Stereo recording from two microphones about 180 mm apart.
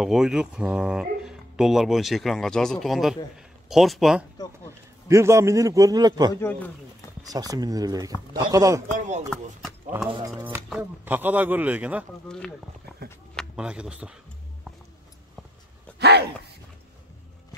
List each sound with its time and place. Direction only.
0.0 s speech: centre (ahead or behind)
5.0 s a man's voice: 15° right (ahead or behind)
8.9 s speech: 45° right (ahead or behind)
10.0 s speech: 25° right (ahead or behind)
10.3 s a man's voice: 10° right (ahead or behind)
12.3 s speech: 5° left (ahead or behind)
16.0 s a sound: 65° right (ahead or behind)